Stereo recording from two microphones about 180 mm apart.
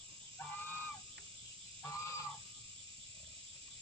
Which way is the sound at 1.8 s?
15° left (ahead or behind).